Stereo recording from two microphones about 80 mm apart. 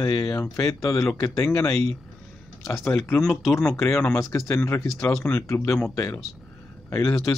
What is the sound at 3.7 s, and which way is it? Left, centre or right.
Speech, left.